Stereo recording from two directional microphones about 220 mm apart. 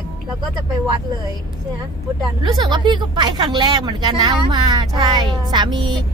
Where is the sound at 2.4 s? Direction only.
20° right (ahead or behind).